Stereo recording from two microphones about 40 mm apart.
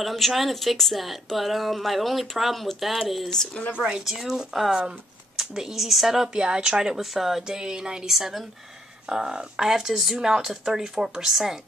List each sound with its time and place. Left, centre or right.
0.0 s a woman's voice: centre
3.3 s speech: centre
4.0 s a woman's voice: centre
7.4 s a sound: centre
8.1 s speech: centre